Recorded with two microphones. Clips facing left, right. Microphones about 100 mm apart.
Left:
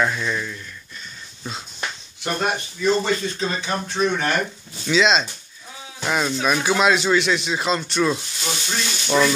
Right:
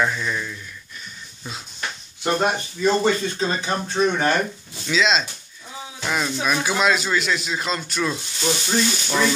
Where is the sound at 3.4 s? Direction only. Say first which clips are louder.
Right 1 dB; 35° right (ahead or behind).